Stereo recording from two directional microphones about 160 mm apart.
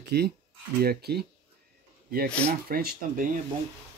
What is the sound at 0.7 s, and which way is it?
Speech, 80° right.